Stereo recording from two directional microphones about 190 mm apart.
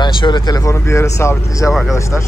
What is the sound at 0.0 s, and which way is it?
Speech, 20° left (ahead or behind).